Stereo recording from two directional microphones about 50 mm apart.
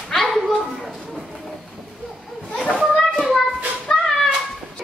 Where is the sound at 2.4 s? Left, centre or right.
Centre.